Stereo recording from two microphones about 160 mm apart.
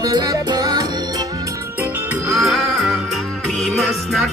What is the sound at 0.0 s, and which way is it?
Music, 20° right (ahead or behind).